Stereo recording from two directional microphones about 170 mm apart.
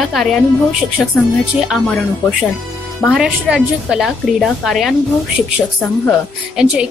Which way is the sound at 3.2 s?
5° right (ahead or behind).